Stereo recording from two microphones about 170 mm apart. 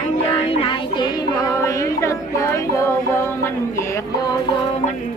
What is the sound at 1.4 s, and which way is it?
Music, 20° left (ahead or behind).